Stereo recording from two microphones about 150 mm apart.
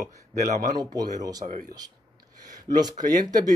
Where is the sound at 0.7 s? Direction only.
25° right (ahead or behind).